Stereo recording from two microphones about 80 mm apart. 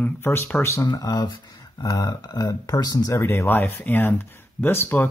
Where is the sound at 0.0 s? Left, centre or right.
Left.